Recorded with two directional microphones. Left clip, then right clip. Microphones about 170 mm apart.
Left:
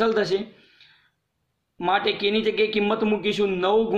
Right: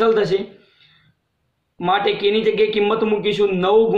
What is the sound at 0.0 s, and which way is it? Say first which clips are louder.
Speech: right 5 dB; 20° left (ahead or behind).